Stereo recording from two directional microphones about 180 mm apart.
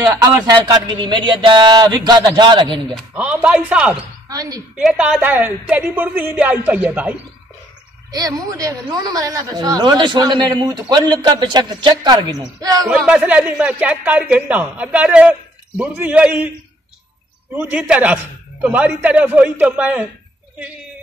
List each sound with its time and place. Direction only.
0.7 s speech: 25° right (ahead or behind)
2.9 s a man's voice: 5° right (ahead or behind)
4.3 s a woman's voice: 20° right (ahead or behind)
4.7 s a man's voice: 5° right (ahead or behind)
8.1 s speech: 20° right (ahead or behind)
12.8 s a man's voice: centre (ahead or behind)
17.6 s a man's voice: 10° right (ahead or behind)